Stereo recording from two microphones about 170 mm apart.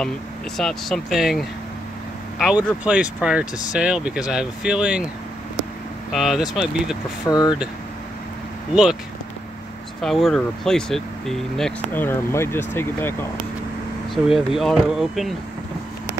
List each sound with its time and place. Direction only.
0.6 s speech: centre (ahead or behind)
6.1 s speech: centre (ahead or behind)
7.2 s speech: 25° left (ahead or behind)
10.0 s speech: centre (ahead or behind)
14.1 s speech: centre (ahead or behind)